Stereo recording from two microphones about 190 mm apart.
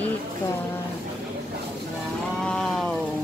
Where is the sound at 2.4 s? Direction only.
5° left (ahead or behind).